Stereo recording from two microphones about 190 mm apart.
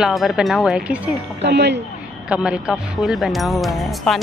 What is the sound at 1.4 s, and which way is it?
Speech, 60° right (ahead or behind).